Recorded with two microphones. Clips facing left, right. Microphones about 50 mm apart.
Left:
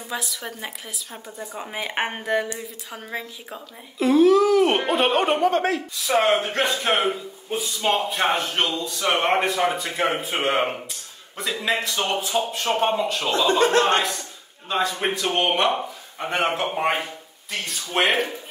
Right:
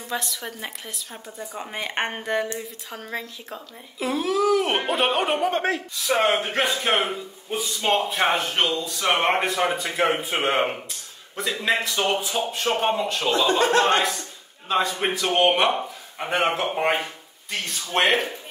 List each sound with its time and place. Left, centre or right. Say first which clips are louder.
0.1 s speech: right 1 dB; centre
5.5 s a man's voice: left 2 dB; right
5.9 s speech: left 2 dB; centre
14.7 s speech: right 1 dB; centre